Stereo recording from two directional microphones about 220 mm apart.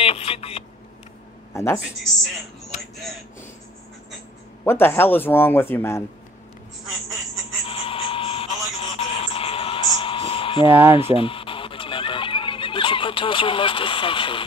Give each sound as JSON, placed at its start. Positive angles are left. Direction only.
{"t": 0.0, "sound": "speech", "side_deg": 25}
{"t": 1.5, "sound": "speech", "side_deg": 10}
{"t": 4.6, "sound": "speech", "side_deg": 10}
{"t": 7.6, "sound": "a sound", "side_deg": 25}
{"t": 11.1, "sound": "goose", "side_deg": 25}